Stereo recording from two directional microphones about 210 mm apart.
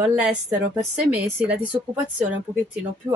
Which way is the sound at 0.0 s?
5° right (ahead or behind).